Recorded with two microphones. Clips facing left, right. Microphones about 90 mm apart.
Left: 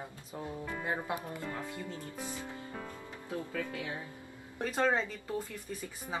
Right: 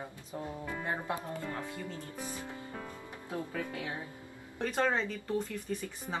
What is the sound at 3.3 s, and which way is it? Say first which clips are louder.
Speech: even; 20° right (ahead or behind).